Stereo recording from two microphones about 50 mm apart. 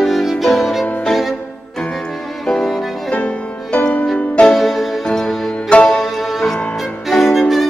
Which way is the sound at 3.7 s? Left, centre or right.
Left.